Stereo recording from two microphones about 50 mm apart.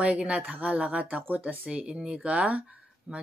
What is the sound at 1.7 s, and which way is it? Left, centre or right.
Speech, right.